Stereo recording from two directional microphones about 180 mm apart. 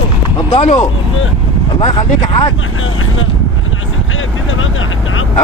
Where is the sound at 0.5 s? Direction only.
35° left (ahead or behind).